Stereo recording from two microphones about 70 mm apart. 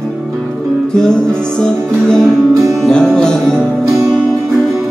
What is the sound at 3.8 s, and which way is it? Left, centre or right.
Music, right.